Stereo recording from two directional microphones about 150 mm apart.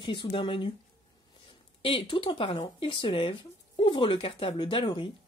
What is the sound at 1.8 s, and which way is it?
Speech, 35° left (ahead or behind).